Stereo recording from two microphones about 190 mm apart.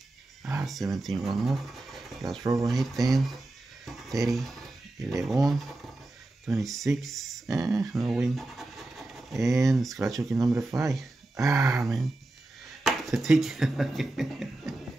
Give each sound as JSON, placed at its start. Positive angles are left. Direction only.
{"t": 0.9, "sound": "speech", "side_deg": 0}
{"t": 2.4, "sound": "speech", "side_deg": -15}
{"t": 2.7, "sound": "speech", "side_deg": 0}
{"t": 6.4, "sound": "speech", "side_deg": 0}
{"t": 7.4, "sound": "speech", "side_deg": -15}
{"t": 8.1, "sound": "a sound", "side_deg": 0}
{"t": 9.4, "sound": "speech", "side_deg": -15}
{"t": 11.8, "sound": "speech", "side_deg": 0}